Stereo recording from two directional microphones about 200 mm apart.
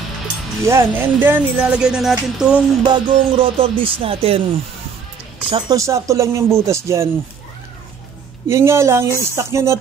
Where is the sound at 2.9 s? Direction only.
25° right (ahead or behind).